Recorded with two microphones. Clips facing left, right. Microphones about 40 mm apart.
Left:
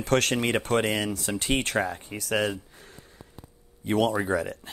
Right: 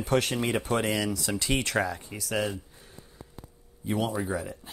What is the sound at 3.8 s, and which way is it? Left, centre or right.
Speech, left.